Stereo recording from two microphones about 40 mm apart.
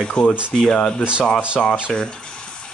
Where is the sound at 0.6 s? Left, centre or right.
Centre.